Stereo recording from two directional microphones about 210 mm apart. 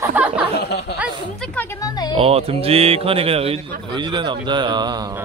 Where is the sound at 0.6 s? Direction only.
50° left (ahead or behind).